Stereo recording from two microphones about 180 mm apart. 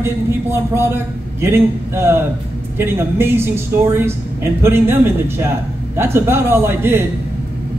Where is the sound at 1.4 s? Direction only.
15° right (ahead or behind).